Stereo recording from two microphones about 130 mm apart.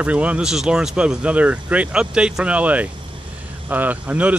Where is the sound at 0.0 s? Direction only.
10° right (ahead or behind).